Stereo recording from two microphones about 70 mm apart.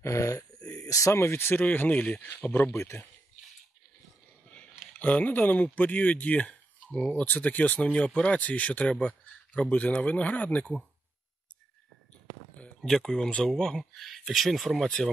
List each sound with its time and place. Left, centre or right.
0.0 s speech: left
0.7 s a sound: left
1.2 s speech: left
2.7 s speech: left
4.5 s speech: centre
12.8 s speech: centre